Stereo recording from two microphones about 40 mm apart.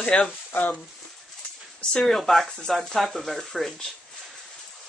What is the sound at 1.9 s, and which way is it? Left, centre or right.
Speech, centre.